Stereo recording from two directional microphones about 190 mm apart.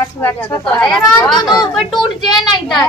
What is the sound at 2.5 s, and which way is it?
Speech, 20° left (ahead or behind).